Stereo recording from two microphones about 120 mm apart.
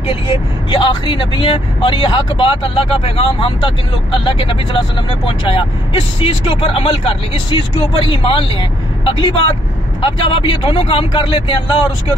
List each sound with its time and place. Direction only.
0.1 s speech: 45° left (ahead or behind)